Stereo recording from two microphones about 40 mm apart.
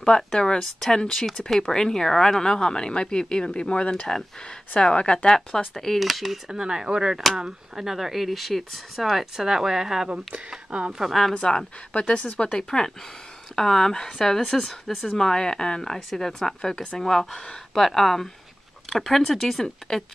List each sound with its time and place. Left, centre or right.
0.0 s speech: centre
1.7 s speech: centre
5.5 s speech: centre
5.9 s speech: centre
10.7 s speech: right
11.1 s speech: centre
11.9 s speech: left; by 15.0 s centre
15.0 s speech: centre